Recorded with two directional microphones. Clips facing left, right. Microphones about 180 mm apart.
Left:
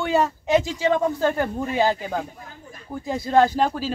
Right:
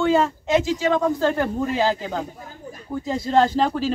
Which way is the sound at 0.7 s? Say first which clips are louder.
Right 1 dB; 15° left (ahead or behind).